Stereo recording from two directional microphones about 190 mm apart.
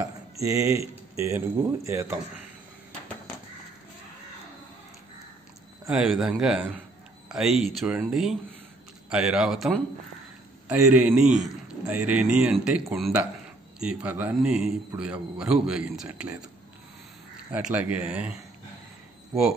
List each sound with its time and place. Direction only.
0.0 s a sound: 15° right (ahead or behind)
1.1 s speech: 15° right (ahead or behind)
5.9 s a man's voice: 5° right (ahead or behind)
17.5 s a man's voice: 5° right (ahead or behind)